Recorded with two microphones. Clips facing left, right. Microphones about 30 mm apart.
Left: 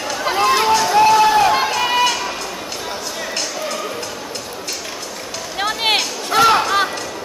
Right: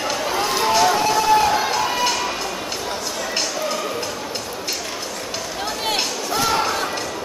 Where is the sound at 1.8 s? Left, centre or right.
Left.